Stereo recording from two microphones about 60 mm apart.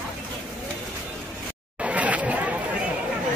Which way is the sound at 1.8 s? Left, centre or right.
Right.